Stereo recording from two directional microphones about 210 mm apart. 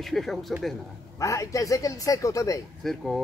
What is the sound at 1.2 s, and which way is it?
Speech, 15° left (ahead or behind).